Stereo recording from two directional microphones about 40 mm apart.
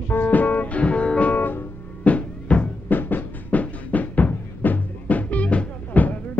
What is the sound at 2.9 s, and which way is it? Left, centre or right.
Music, left.